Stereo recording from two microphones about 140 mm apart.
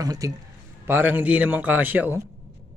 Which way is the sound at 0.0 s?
25° right (ahead or behind).